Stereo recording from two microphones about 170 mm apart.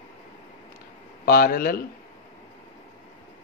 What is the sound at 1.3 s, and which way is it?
Speech, 60° left (ahead or behind).